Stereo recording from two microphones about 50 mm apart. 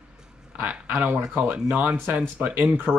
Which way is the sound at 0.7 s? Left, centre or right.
Right.